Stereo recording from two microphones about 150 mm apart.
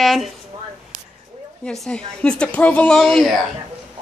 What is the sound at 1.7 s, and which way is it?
Speech, 5° left (ahead or behind).